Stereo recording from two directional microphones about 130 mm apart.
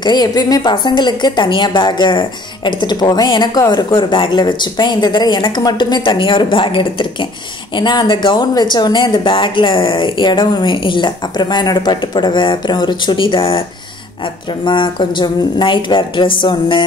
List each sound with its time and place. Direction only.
0.0 s a woman's voice: 30° left (ahead or behind)